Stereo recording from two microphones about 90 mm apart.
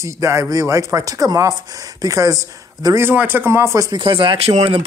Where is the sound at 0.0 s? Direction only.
35° right (ahead or behind).